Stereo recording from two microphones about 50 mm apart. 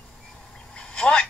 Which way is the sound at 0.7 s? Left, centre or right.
Centre.